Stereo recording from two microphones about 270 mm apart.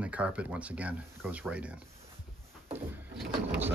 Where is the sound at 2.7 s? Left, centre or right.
Centre.